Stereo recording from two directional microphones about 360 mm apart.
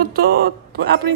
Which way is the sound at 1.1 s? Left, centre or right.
Right.